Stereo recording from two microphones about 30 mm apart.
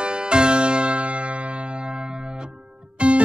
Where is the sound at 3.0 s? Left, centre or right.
Right.